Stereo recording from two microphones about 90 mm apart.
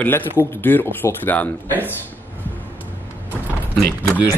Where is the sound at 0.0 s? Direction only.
20° left (ahead or behind).